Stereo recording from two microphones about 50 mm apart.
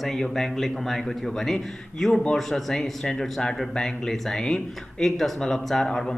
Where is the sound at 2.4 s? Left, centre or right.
Centre.